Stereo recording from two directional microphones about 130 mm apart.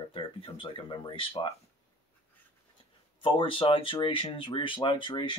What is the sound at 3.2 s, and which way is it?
Speech, 40° left (ahead or behind).